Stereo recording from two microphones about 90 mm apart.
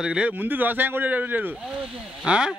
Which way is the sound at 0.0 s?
10° right (ahead or behind).